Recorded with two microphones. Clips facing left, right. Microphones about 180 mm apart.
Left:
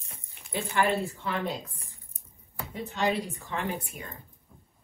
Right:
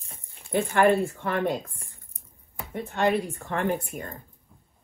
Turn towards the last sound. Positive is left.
turn(degrees=-55)  # may be behind; listen again after turning